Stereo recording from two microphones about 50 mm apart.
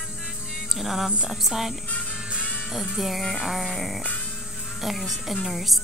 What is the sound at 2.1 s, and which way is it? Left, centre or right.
Music, centre.